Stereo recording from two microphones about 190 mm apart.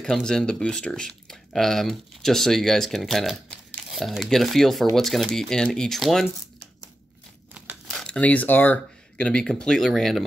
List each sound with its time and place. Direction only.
0.0 s speech: 5° left (ahead or behind)
7.9 s speech: 5° left (ahead or behind)